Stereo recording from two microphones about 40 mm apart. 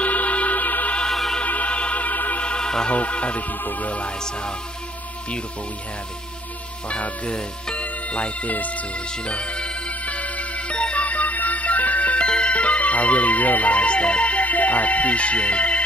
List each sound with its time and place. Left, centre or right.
0.0 s music: left
1.1 s music: centre
1.4 s music: left
2.4 s music: left
2.9 s music: left
6.9 s speech: left
9.3 s music: left